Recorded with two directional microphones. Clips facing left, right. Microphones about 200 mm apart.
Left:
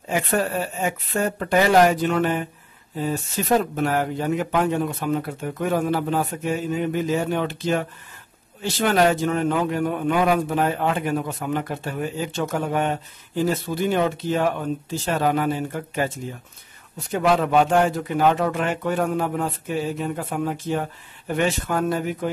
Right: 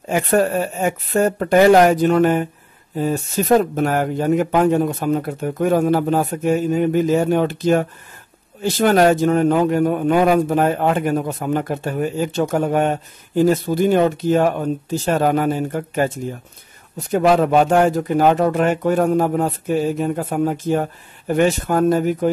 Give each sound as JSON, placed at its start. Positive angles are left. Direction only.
{"t": 0.1, "sound": "a man's voice", "side_deg": -50}
{"t": 17.1, "sound": "a man's voice", "side_deg": -45}